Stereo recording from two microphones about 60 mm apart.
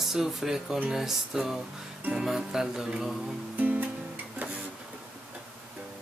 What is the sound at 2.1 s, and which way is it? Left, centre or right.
Music, centre.